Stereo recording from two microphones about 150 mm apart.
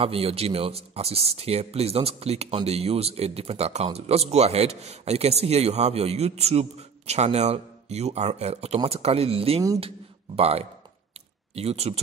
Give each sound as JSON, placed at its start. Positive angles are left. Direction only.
{"t": 0.0, "sound": "speech", "side_deg": -40}